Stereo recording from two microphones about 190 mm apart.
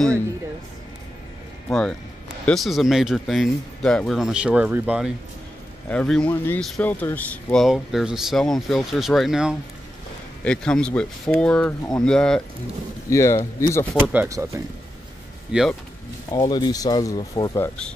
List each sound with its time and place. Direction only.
1.7 s speech: 5° left (ahead or behind)
7.5 s speech: centre (ahead or behind)
13.1 s speech: 15° left (ahead or behind)
14.0 s speech: 10° right (ahead or behind)
16.3 s speech: 20° left (ahead or behind)